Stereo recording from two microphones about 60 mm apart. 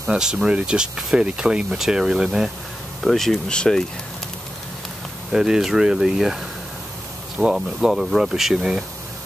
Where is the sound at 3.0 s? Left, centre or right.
Centre.